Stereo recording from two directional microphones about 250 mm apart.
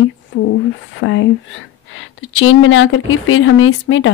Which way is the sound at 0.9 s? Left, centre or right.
Left.